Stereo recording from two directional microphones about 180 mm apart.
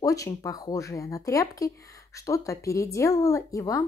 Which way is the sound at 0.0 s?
20° left (ahead or behind).